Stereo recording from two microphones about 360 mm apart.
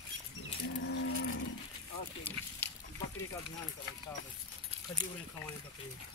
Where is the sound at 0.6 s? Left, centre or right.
Left.